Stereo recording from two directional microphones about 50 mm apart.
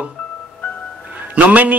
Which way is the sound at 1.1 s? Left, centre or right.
Right.